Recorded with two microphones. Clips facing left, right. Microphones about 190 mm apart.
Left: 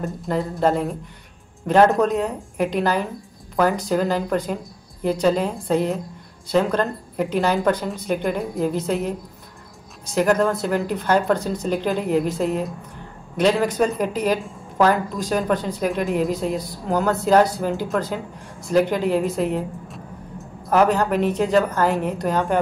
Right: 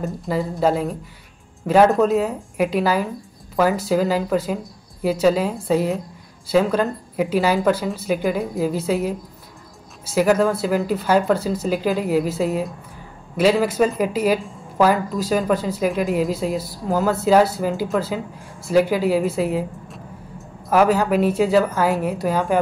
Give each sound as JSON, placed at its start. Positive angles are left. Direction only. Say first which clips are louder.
{"t": 0.0, "sound": "a woman's voice", "louder": "right 1 dB", "side_deg": 0}